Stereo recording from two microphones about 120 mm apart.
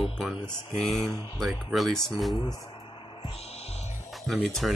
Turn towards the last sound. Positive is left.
turn(degrees=5)  # may be behind; listen again after turning